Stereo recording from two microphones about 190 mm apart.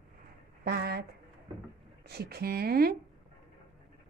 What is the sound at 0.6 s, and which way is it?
Speech, 55° right (ahead or behind).